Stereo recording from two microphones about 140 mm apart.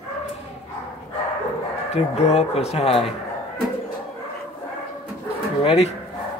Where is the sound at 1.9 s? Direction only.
50° left (ahead or behind).